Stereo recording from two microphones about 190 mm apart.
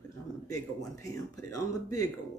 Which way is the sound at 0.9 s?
15° left (ahead or behind).